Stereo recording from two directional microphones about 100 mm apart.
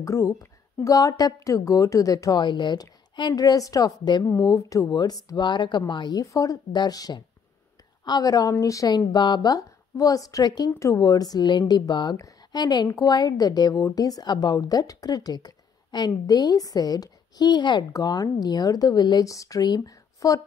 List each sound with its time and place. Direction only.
0.0 s a woman's voice: 30° left (ahead or behind)
2.4 s speech: 50° left (ahead or behind)
4.2 s speech: 30° left (ahead or behind); by 6.2 s 50° left (ahead or behind)
6.3 s a woman's voice: 40° left (ahead or behind)
10.7 s speech: 30° left (ahead or behind)
11.0 s a woman's voice: 40° left (ahead or behind)